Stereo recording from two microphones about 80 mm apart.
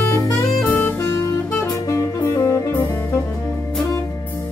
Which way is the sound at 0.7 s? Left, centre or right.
Left.